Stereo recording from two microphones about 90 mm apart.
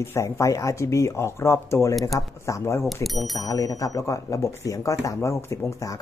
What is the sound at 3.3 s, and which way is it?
Speech, 40° left (ahead or behind).